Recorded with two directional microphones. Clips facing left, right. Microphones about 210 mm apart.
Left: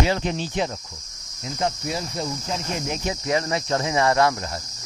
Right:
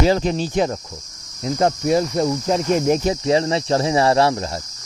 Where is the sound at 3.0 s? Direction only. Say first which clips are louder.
Right 6 dB; 30° right (ahead or behind).